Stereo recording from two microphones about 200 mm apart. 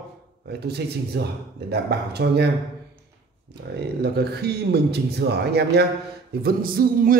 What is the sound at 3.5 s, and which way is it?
A man's voice, 55° right (ahead or behind).